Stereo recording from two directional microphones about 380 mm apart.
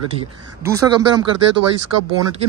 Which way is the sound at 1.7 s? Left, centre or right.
Right.